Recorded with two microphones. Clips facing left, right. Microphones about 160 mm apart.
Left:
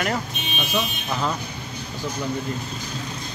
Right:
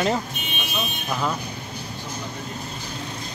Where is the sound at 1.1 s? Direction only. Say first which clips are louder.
Right 4 dB; 5° right (ahead or behind).